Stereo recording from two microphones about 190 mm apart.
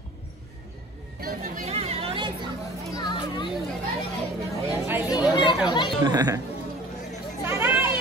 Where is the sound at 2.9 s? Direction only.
25° left (ahead or behind).